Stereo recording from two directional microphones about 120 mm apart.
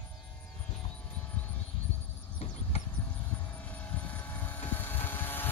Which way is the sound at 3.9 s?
15° left (ahead or behind).